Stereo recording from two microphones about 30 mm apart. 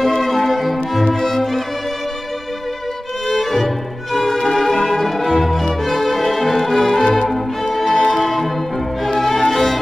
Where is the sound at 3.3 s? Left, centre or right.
Centre.